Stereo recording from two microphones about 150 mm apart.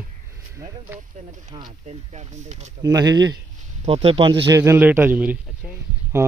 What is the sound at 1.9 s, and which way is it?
Speech, 50° right (ahead or behind).